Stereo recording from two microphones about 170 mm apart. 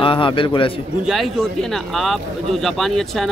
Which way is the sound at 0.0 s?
30° left (ahead or behind).